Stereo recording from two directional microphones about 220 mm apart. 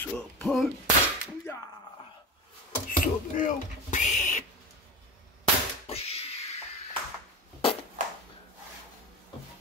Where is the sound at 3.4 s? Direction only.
35° left (ahead or behind).